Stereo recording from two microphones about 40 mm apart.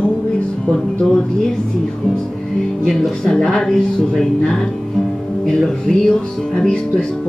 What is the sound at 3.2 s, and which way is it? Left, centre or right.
Speech, centre.